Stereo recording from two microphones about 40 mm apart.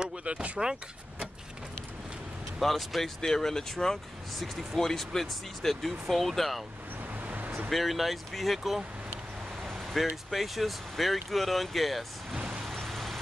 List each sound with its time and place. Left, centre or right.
0.0 s speech: right
2.6 s speech: centre
7.2 s a sound: right
7.7 s speech: centre
9.6 s vehicle: centre
10.3 s speech: centre
12.7 s vehicle: centre